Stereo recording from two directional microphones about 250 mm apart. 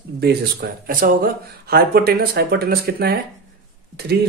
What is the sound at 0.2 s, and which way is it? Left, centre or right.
Speech, right.